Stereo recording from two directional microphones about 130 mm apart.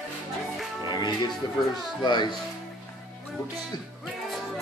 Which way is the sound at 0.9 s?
35° left (ahead or behind).